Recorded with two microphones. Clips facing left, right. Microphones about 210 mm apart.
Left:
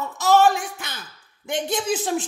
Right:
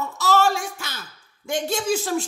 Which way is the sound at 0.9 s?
55° left (ahead or behind).